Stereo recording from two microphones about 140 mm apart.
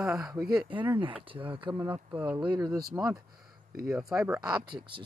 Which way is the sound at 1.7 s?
15° right (ahead or behind).